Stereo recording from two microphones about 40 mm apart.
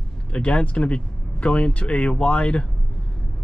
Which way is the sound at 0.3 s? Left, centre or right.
Left.